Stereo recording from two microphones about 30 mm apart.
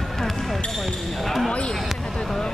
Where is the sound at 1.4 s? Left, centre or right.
Left.